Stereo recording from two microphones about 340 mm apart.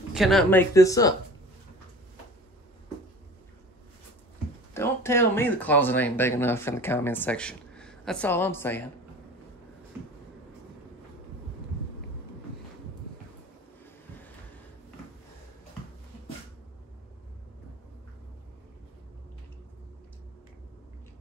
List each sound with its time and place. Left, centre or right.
0.1 s speech: centre
4.7 s speech: centre